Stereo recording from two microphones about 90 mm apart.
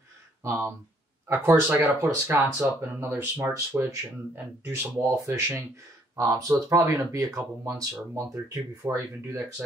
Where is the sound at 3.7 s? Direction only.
20° right (ahead or behind).